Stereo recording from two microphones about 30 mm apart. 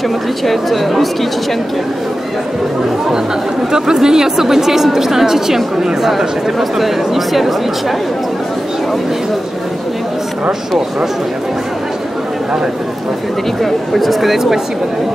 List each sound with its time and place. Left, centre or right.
0.5 s speech: centre
3.7 s a woman's voice: right
6.8 s speech: centre
13.6 s speech: centre